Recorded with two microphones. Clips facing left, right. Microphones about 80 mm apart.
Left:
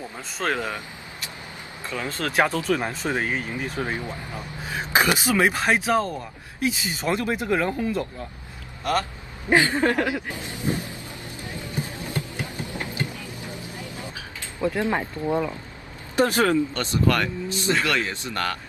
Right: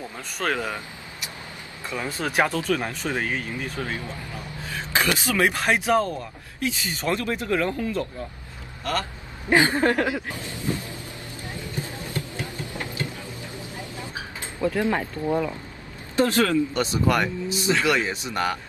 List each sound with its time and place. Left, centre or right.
0.4 s speech: centre
1.9 s speech: centre
2.4 s speech: centre
2.9 s speech: left; by 6.1 s centre
6.1 s speech: centre
9.6 s speech: centre
10.2 s music: left
14.6 s speech: centre
16.7 s speech: centre